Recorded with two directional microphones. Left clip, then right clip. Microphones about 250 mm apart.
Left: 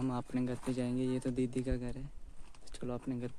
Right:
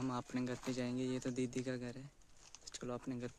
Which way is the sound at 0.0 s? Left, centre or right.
Centre.